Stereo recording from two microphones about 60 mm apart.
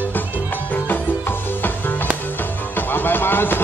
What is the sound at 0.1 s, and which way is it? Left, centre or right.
Music, left.